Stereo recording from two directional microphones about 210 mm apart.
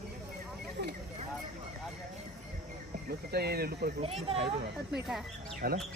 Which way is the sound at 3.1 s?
50° right (ahead or behind).